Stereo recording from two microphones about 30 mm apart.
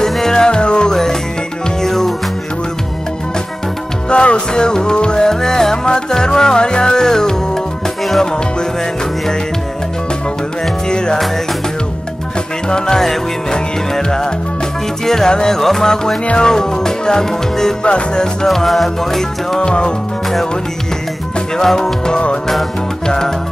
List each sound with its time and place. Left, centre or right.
0.3 s music: left
1.8 s music: centre
4.1 s music: left
5.3 s music: centre
10.9 s music: left
12.6 s music: left
15.8 s music: centre
17.8 s music: left
18.5 s music: centre
19.6 s music: left
21.7 s music: left